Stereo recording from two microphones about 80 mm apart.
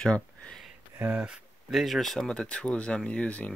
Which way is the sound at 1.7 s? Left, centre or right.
Centre.